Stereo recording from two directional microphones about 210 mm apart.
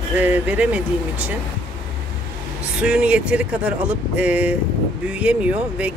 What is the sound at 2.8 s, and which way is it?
Speech, 5° right (ahead or behind).